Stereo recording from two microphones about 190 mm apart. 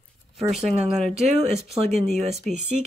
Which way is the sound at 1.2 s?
35° right (ahead or behind).